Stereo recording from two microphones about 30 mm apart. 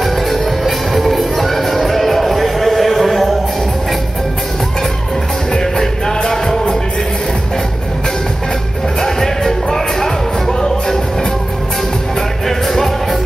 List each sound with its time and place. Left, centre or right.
0.0 s music: centre
5.5 s music: centre
9.0 s music: centre
12.4 s music: centre